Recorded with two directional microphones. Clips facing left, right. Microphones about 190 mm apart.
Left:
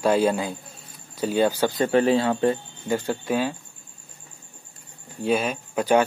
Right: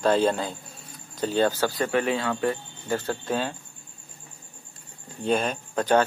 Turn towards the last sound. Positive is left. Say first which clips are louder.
# left 2 dB
turn(degrees=10)  # may be behind; listen again after turning